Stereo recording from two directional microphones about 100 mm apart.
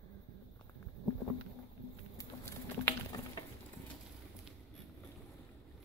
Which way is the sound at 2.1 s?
25° left (ahead or behind).